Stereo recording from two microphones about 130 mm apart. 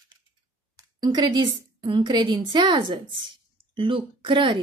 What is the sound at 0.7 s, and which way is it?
A woman's voice, 30° right (ahead or behind).